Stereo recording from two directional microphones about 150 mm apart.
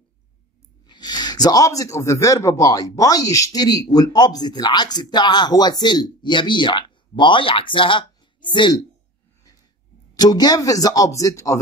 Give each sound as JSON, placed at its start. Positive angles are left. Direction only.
{"t": 0.8, "sound": "speech", "side_deg": 30}
{"t": 10.1, "sound": "speech", "side_deg": 25}